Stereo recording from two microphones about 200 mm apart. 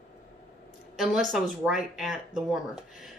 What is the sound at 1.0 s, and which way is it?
Speech, centre (ahead or behind).